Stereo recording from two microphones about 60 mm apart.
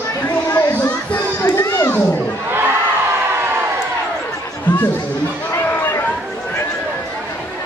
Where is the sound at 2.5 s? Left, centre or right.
Right.